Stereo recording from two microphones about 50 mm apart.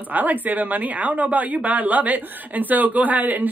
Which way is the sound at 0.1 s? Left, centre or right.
Right.